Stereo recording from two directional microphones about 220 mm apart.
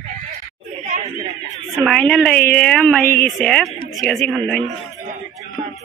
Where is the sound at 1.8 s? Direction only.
Centre (ahead or behind).